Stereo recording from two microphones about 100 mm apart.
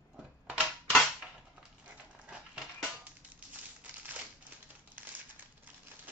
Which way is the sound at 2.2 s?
10° right (ahead or behind).